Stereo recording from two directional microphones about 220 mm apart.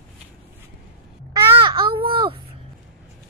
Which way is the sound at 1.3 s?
20° right (ahead or behind).